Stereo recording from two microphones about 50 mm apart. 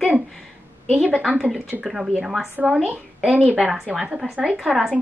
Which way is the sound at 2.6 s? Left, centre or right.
Right.